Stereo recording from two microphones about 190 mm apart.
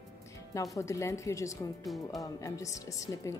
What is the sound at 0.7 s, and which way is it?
A woman's voice, 15° left (ahead or behind).